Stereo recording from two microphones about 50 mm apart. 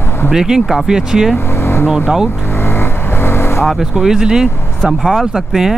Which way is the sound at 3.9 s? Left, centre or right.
Centre.